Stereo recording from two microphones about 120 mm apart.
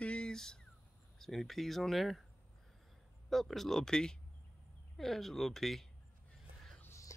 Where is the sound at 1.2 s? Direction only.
Centre (ahead or behind).